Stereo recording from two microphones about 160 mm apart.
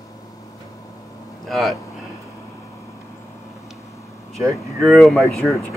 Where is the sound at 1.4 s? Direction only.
Centre (ahead or behind).